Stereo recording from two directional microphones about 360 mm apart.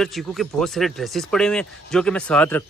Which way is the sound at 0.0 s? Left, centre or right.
Centre.